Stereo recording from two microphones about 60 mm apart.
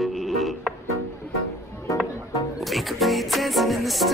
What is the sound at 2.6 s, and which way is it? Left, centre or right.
Speech, centre.